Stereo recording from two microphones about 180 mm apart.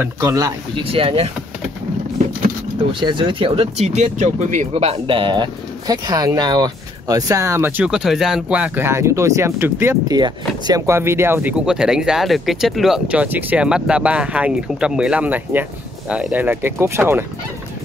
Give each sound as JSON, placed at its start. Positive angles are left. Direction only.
{"t": 0.0, "sound": "speech", "side_deg": -20}
{"t": 0.9, "sound": "speech", "side_deg": -30}
{"t": 2.8, "sound": "speech", "side_deg": -25}